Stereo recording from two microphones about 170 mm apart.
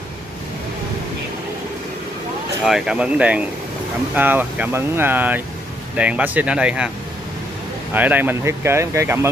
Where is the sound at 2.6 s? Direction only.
Centre (ahead or behind).